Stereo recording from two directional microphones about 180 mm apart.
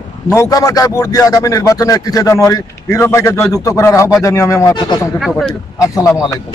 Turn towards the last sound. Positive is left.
turn(degrees=20)  # may be behind; listen again after turning